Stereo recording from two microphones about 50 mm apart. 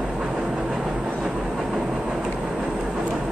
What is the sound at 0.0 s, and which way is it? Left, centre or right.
Train, centre.